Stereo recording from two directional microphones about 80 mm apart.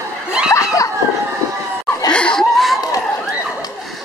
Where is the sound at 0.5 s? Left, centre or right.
Left.